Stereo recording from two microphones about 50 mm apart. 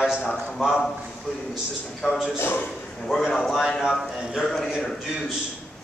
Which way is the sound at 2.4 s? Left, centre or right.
Left.